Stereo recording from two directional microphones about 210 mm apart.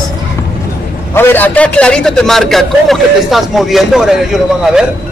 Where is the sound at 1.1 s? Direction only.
10° left (ahead or behind).